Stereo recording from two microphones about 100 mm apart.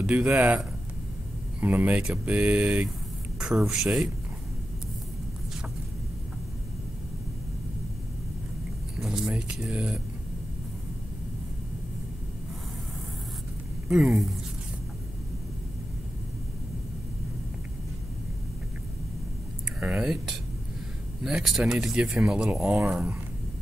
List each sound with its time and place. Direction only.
0.0 s speech: 10° right (ahead or behind)
1.6 s speech: 15° right (ahead or behind)
9.0 s speech: 5° right (ahead or behind)
13.8 s speech: 5° right (ahead or behind)
19.8 s speech: 5° right (ahead or behind)